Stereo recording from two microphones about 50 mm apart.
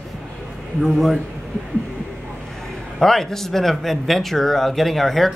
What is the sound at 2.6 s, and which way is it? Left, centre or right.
A man's voice, centre.